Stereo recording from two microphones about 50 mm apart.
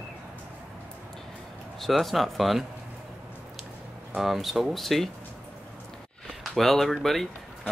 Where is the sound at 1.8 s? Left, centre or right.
Centre.